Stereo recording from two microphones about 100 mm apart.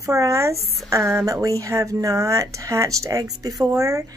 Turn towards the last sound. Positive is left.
turn(degrees=-35)  # may be behind; listen again after turning